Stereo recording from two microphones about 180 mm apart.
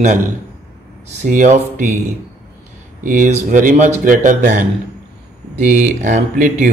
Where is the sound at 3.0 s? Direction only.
45° right (ahead or behind).